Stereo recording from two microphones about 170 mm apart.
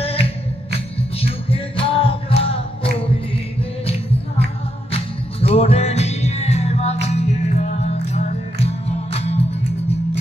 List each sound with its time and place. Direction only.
0.0 s music: 35° left (ahead or behind)
5.5 s music: 35° left (ahead or behind)